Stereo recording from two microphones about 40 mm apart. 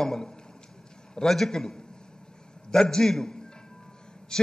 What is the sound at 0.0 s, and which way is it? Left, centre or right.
A man's voice, centre.